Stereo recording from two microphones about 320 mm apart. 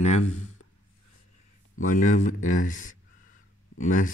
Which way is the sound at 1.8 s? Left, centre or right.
Left.